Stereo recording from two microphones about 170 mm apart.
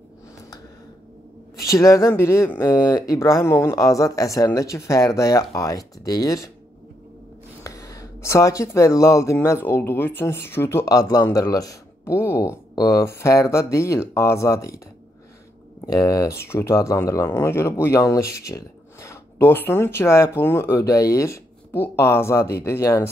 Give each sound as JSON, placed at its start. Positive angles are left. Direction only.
{"t": 1.6, "sound": "speech", "side_deg": 20}
{"t": 7.6, "sound": "speech", "side_deg": 20}
{"t": 15.8, "sound": "speech", "side_deg": 20}